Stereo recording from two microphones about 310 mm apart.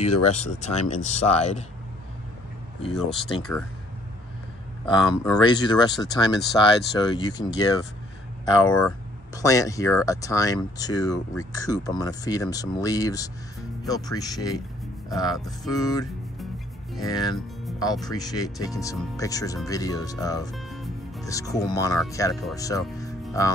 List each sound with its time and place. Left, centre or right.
0.0 s speech: left
2.8 s speech: centre
4.8 s speech: centre
15.7 s speech: centre
20.5 s music: centre
21.3 s speech: centre
22.6 s music: centre